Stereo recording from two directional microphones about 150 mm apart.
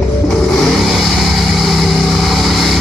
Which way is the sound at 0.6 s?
Centre (ahead or behind).